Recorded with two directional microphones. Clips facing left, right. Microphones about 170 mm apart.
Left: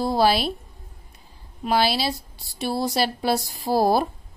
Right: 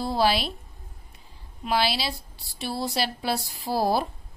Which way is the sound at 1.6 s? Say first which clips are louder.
Left 4 dB; 45° left (ahead or behind).